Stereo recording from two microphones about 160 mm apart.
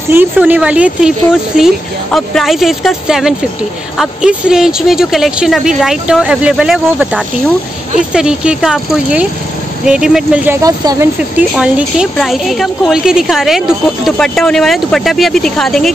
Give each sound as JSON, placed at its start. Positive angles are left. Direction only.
{"t": 0.1, "sound": "a woman's voice", "side_deg": -10}
{"t": 10.6, "sound": "speech", "side_deg": -20}
{"t": 11.3, "sound": "a woman's voice", "side_deg": -5}